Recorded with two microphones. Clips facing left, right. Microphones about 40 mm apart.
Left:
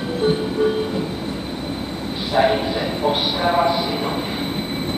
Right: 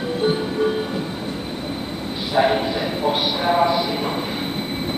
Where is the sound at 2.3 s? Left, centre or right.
Centre.